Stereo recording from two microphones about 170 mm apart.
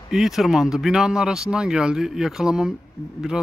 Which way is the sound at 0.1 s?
Centre (ahead or behind).